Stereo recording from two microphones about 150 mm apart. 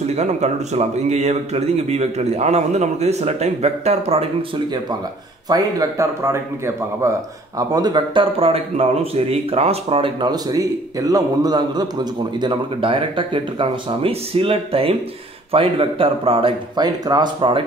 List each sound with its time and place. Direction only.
0.0 s a man's voice: 45° right (ahead or behind)
5.5 s a man's voice: 20° right (ahead or behind)